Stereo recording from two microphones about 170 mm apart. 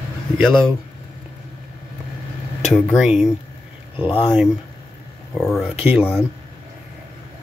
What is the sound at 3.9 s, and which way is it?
Speech, 30° left (ahead or behind).